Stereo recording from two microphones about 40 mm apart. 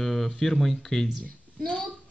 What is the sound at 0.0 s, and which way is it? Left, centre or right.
Speech, centre.